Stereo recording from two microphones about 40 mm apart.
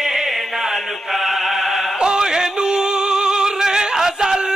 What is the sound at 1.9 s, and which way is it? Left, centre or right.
Music, centre.